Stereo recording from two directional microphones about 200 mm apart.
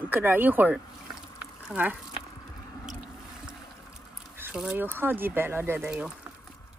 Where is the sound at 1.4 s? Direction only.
5° right (ahead or behind).